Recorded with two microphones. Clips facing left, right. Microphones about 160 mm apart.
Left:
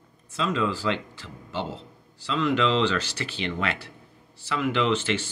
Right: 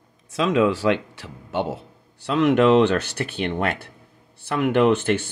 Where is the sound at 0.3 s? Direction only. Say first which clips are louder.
Right 7 dB; 70° right (ahead or behind).